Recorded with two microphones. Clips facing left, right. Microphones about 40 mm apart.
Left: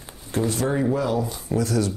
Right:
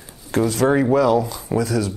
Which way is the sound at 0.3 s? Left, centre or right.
Right.